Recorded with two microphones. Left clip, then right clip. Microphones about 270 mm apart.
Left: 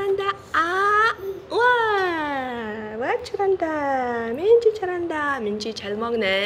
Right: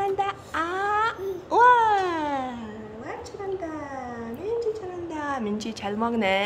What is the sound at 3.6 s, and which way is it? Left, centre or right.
Speech, centre.